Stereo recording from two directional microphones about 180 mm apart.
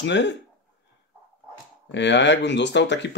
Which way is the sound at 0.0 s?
80° left.